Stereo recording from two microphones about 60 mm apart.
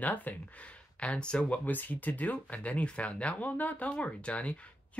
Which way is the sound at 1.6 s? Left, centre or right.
Left.